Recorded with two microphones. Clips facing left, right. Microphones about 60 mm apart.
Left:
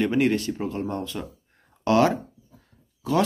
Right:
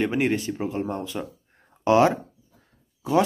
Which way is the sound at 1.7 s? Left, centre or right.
Centre.